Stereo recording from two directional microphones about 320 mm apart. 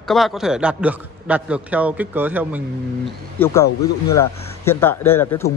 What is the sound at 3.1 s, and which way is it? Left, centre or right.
A man's voice, centre.